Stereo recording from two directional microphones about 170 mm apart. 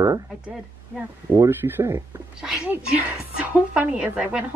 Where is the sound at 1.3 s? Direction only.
15° right (ahead or behind).